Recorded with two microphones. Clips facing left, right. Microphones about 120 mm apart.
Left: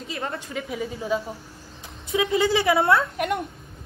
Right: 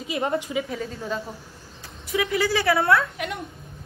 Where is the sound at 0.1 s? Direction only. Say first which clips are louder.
Right 7 dB; 20° right (ahead or behind).